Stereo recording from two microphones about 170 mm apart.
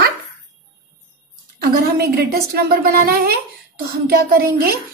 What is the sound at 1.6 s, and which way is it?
A woman's voice, 65° right (ahead or behind).